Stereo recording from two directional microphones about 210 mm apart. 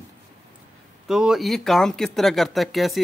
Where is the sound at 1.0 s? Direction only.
Centre (ahead or behind).